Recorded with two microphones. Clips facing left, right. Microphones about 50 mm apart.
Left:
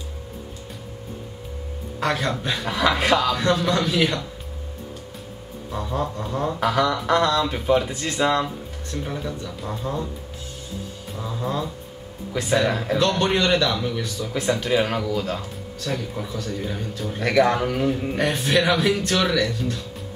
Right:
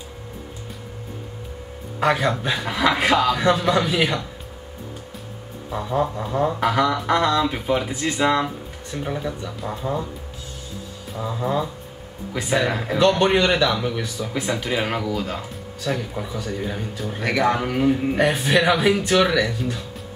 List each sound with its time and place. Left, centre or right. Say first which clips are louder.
2.0 s speech: right 4 dB; centre
5.7 s speech: right 4 dB; centre
11.1 s speech: right 3 dB; centre